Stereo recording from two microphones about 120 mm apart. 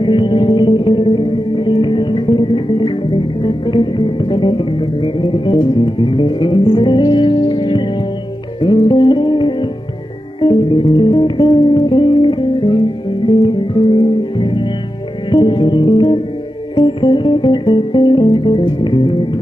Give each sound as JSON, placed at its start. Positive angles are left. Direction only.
{"t": 0.0, "sound": "music", "side_deg": 45}